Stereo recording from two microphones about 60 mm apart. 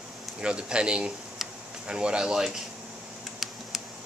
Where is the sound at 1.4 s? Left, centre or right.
Centre.